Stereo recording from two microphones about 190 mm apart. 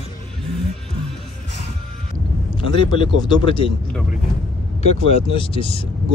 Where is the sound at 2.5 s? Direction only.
25° left (ahead or behind).